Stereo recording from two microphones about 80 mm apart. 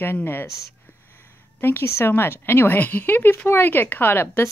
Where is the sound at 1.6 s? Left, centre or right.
Left.